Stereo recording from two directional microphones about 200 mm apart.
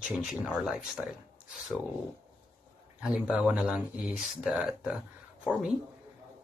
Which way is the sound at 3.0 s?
5° right (ahead or behind).